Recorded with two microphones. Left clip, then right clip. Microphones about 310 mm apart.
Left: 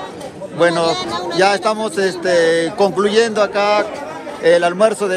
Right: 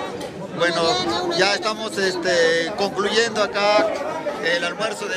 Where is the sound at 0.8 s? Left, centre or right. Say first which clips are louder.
Left 2 dB; left.